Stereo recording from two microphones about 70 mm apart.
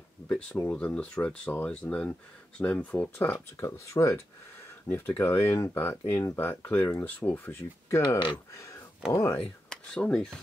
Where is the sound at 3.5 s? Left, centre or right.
Left.